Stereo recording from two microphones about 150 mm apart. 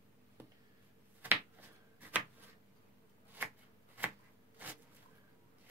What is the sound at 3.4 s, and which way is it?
Shuffling cards, 15° right (ahead or behind).